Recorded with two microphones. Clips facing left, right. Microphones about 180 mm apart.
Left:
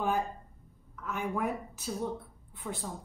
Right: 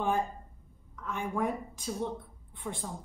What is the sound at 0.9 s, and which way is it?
A woman's voice, 5° left (ahead or behind).